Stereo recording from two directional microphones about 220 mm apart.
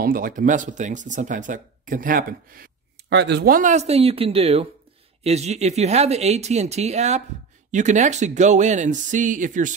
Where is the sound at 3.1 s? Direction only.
50° right (ahead or behind).